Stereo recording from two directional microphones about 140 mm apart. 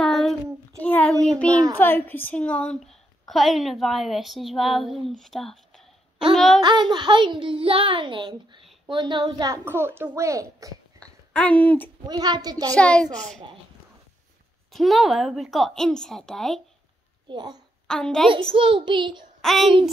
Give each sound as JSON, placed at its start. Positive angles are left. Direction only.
{"t": 0.0, "sound": "child singing", "side_deg": 5}
{"t": 1.8, "sound": "a woman's voice", "side_deg": 15}
{"t": 6.6, "sound": "a child's voice", "side_deg": -35}
{"t": 9.7, "sound": "a child's voice", "side_deg": -15}
{"t": 11.0, "sound": "a sound", "side_deg": 10}
{"t": 12.1, "sound": "a child's voice", "side_deg": -30}
{"t": 12.7, "sound": "a child's voice", "side_deg": 10}
{"t": 14.7, "sound": "a woman's voice", "side_deg": 0}
{"t": 17.3, "sound": "a child's voice", "side_deg": -30}
{"t": 17.8, "sound": "a woman's voice", "side_deg": 5}
{"t": 18.3, "sound": "a child's voice", "side_deg": -40}
{"t": 19.4, "sound": "a child's voice", "side_deg": 0}